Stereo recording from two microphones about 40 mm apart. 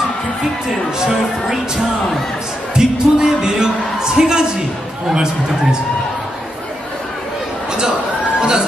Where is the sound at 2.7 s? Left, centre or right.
Centre.